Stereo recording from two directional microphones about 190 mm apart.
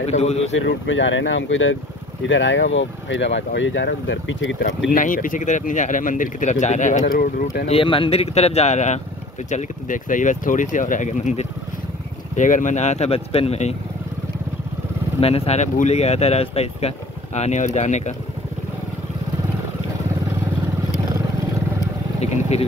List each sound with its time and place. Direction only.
0.0 s speech: 35° left (ahead or behind)
0.5 s speech: 75° left (ahead or behind)
4.9 s speech: 45° left (ahead or behind)
7.6 s speech: 30° left (ahead or behind)
15.1 s speech: 30° left (ahead or behind)
22.2 s speech: 35° left (ahead or behind)